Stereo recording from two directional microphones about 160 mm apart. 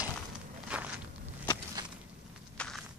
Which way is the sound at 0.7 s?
10° right (ahead or behind).